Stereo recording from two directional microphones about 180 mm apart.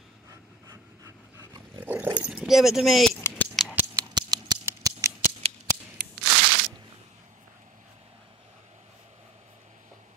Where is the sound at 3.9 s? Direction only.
20° right (ahead or behind).